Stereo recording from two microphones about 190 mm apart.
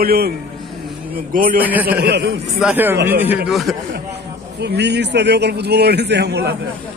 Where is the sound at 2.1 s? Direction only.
60° right (ahead or behind).